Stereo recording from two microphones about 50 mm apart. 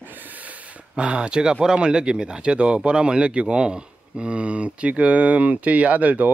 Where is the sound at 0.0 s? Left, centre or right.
Right.